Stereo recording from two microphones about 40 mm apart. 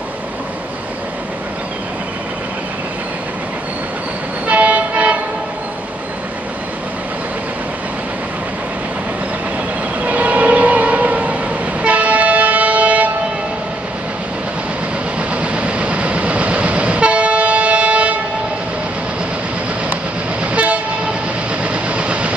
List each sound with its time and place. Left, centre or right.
4.5 s train: right
10.0 s civil defense siren: right
11.8 s train: right
15.1 s train: right
20.5 s train: right